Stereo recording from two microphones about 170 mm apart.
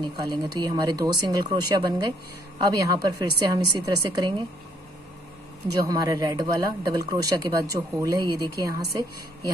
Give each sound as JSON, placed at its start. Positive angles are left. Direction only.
{"t": 0.0, "sound": "speech", "side_deg": -25}
{"t": 5.9, "sound": "speech", "side_deg": -20}